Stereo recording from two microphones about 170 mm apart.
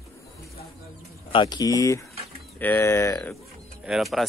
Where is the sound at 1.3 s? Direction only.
25° left (ahead or behind).